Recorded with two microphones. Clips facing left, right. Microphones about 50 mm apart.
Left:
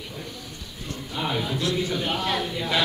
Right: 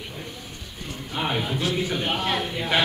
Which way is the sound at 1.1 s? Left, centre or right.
Right.